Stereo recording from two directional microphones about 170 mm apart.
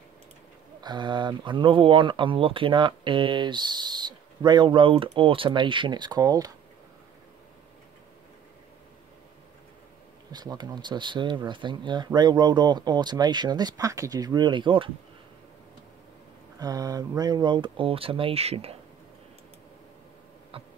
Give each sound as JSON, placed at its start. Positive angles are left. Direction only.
{"t": 0.7, "sound": "speech", "side_deg": -25}
{"t": 10.3, "sound": "speech", "side_deg": -25}
{"t": 16.5, "sound": "speech", "side_deg": -20}
{"t": 20.5, "sound": "insect", "side_deg": -35}